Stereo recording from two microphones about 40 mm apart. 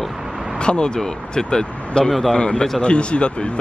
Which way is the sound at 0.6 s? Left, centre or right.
Left.